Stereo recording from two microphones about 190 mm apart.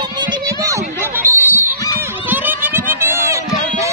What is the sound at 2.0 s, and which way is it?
Run, 10° right (ahead or behind).